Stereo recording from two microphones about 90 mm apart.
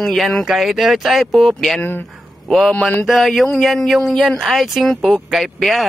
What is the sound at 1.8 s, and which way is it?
Speech, 20° left (ahead or behind).